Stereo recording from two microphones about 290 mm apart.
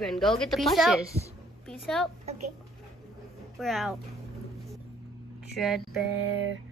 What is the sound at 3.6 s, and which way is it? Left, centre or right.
Speech, centre.